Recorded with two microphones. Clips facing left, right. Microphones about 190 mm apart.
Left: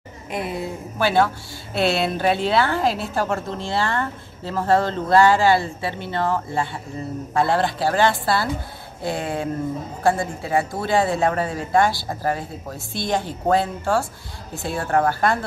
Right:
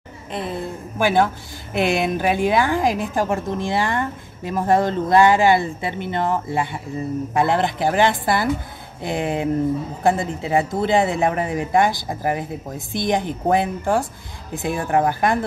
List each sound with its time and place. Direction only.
0.3 s a woman's voice: 10° left (ahead or behind)
0.9 s a woman's voice: 15° right (ahead or behind)